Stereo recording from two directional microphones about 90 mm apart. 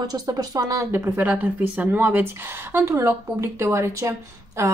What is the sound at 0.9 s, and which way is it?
Speech, 25° right (ahead or behind).